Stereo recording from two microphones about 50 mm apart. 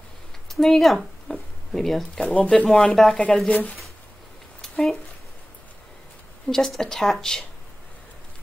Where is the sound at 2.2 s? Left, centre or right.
Left.